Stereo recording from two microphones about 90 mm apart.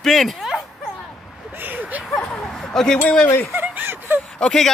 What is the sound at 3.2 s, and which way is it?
Speech, 20° left (ahead or behind).